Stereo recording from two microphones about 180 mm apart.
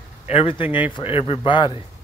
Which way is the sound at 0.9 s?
30° left (ahead or behind).